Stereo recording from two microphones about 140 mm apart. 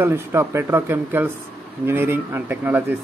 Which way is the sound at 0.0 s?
20° right (ahead or behind).